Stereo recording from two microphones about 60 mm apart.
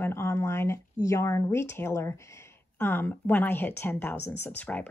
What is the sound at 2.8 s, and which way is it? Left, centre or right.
Speech, left.